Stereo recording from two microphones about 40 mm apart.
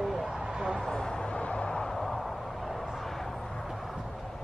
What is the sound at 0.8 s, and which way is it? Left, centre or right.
Speech, centre.